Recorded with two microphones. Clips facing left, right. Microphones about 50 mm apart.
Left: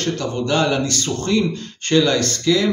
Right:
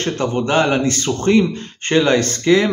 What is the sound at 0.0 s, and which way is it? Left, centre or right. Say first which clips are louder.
A man's voice: right 3 dB; right.